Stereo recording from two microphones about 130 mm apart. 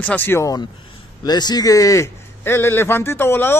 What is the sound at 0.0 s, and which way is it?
Speech, 15° left (ahead or behind).